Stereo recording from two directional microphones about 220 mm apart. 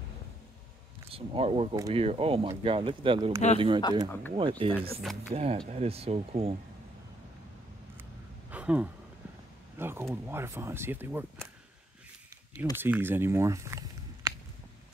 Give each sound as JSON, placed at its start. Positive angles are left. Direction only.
{"t": 1.1, "sound": "speech", "side_deg": -25}
{"t": 8.0, "sound": "a sound", "side_deg": -5}
{"t": 9.8, "sound": "speech", "side_deg": -10}
{"t": 12.7, "sound": "speech", "side_deg": -10}